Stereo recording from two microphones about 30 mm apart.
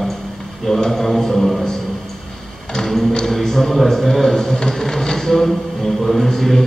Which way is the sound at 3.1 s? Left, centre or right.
Left.